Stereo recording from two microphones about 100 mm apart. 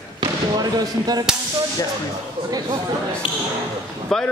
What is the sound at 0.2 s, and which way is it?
Speech, 40° right (ahead or behind).